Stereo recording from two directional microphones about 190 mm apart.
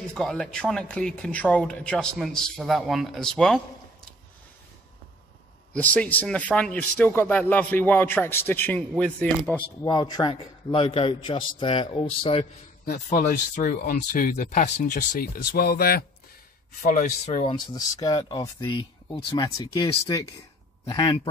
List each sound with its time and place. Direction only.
0.1 s speech: 5° left (ahead or behind)
5.7 s speech: 5° left (ahead or behind)
9.6 s a man's voice: 20° left (ahead or behind)
12.8 s speech: 45° left (ahead or behind)
17.7 s a man's voice: 20° left (ahead or behind)